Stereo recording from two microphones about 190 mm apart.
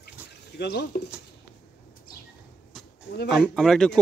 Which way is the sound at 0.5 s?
60° left (ahead or behind).